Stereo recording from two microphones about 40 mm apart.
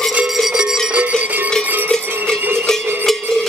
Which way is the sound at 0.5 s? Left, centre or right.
Centre.